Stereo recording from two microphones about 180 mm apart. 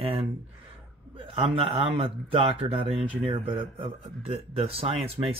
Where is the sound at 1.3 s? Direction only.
30° right (ahead or behind).